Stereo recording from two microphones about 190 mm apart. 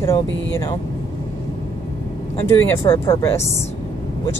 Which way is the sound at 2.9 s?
25° left (ahead or behind).